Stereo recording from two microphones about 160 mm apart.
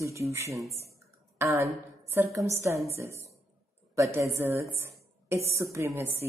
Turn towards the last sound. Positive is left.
turn(degrees=-15)  # may be behind; listen again after turning